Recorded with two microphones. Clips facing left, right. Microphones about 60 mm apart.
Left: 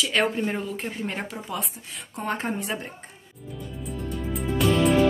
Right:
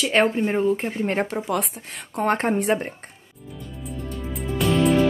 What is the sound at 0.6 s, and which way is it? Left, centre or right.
Speech, right.